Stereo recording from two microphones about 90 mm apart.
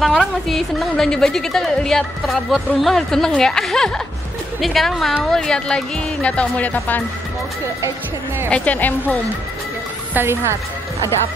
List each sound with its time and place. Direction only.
0.0 s a woman's voice: 5° left (ahead or behind); by 7.0 s 20° left (ahead or behind)
8.5 s speech: 15° left (ahead or behind)
10.1 s a woman's voice: 25° right (ahead or behind)